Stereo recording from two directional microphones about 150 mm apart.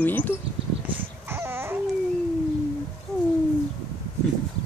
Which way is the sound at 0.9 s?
15° right (ahead or behind).